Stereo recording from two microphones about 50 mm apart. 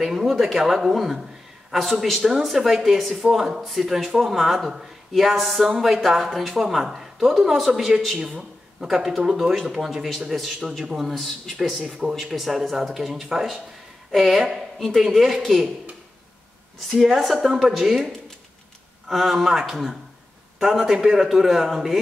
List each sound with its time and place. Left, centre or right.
0.0 s speech: centre
8.2 s speech: centre
8.8 s speech: centre
10.8 s speech: centre
11.1 s speech: centre
16.9 s speech: centre